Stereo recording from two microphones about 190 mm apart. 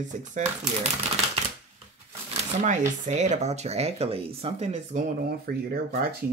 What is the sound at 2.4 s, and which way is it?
Speech, 40° right (ahead or behind).